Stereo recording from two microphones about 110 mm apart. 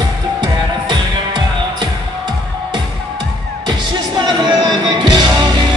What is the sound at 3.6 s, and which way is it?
Music, 40° right (ahead or behind).